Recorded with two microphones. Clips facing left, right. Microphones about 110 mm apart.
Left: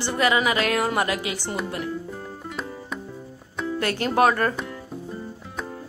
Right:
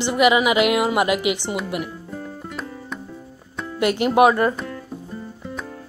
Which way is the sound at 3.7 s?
15° right (ahead or behind).